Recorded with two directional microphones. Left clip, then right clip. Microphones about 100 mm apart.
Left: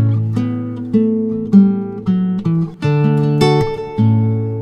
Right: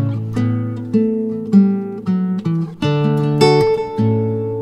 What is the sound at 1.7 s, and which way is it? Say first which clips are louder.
Music: left 1 dB; 45° left (ahead or behind).